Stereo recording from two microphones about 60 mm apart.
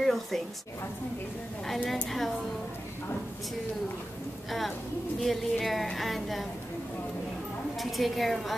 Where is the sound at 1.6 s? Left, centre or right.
Centre.